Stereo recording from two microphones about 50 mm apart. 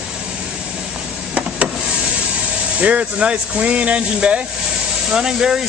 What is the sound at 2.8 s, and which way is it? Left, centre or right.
Speech, right.